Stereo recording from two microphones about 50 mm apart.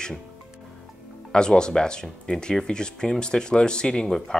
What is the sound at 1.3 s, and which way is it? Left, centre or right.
Speech, centre.